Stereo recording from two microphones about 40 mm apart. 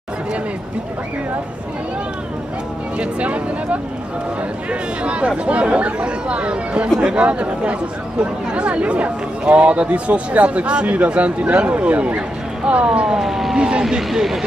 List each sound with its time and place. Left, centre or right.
3.0 s speech: right
13.2 s speech: centre
13.6 s speech: right
13.8 s speech: centre